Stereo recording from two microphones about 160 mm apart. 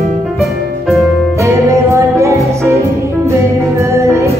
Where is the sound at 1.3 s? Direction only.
20° right (ahead or behind).